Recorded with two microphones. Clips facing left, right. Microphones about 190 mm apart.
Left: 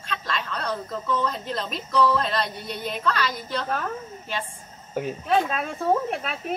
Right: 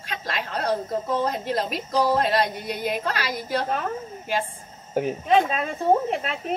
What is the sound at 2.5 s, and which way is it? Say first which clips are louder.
Speech: right 3 dB; 10° right (ahead or behind).